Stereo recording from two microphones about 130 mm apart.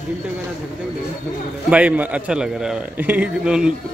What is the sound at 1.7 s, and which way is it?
A man's voice, 10° right (ahead or behind).